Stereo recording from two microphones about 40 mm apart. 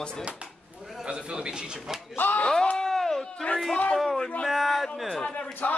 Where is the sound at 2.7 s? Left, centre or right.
Centre.